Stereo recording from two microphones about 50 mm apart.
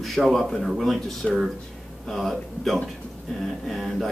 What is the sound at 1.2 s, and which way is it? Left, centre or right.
Speech, left.